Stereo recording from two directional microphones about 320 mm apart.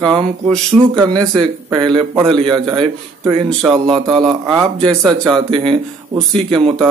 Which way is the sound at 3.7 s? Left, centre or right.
Centre.